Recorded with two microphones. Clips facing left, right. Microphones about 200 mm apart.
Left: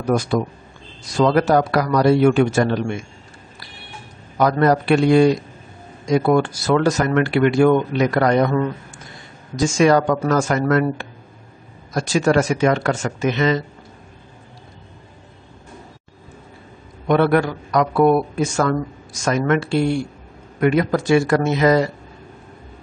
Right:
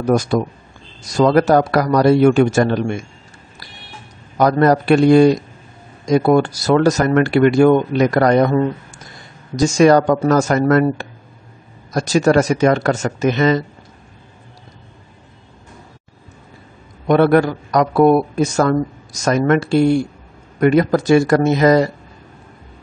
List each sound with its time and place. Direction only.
0.1 s speech: 45° right (ahead or behind)
4.4 s speech: 40° right (ahead or behind)
17.1 s speech: 40° right (ahead or behind)